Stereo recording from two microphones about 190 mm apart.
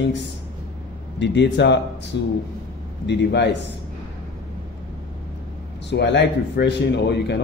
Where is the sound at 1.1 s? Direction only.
65° left (ahead or behind).